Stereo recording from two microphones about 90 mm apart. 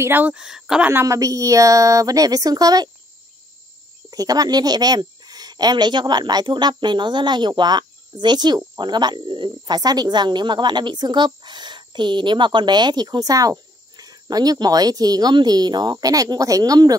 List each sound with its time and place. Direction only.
0.0 s speech: 20° right (ahead or behind)
0.4 s speech: 5° right (ahead or behind)
1.0 s a woman's voice: 40° right (ahead or behind)
4.1 s speech: 45° right (ahead or behind)